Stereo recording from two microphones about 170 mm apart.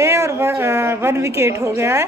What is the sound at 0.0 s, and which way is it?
A woman's voice, 15° right (ahead or behind).